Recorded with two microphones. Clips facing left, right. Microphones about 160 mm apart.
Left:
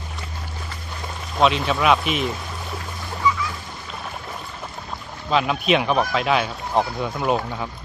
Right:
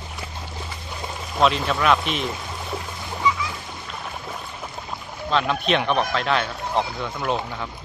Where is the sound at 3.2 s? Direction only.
20° right (ahead or behind).